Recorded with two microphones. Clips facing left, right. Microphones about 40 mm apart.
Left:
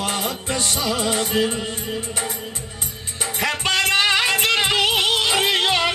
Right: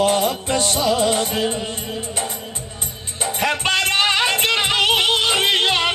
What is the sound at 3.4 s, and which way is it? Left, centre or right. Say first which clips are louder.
Music: right 1 dB; right.